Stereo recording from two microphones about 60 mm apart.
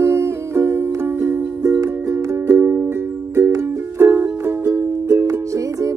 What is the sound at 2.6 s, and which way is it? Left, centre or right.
Music, right.